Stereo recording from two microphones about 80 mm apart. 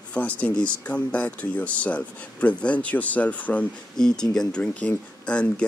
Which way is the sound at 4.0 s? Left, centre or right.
Centre.